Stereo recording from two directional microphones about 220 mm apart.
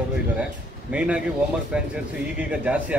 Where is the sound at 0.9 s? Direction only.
5° right (ahead or behind).